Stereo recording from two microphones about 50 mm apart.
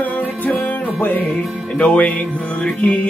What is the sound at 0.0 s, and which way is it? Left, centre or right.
Music, left.